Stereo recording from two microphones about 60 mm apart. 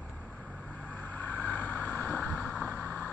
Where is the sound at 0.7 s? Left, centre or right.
Left.